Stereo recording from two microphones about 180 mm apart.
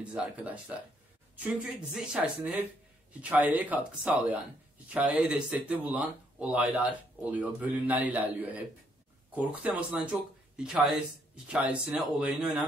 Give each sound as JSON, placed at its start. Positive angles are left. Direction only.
{"t": 0.0, "sound": "a woman's voice", "side_deg": -5}